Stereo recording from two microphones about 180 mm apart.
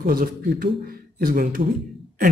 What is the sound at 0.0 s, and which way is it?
Speech, 55° right (ahead or behind).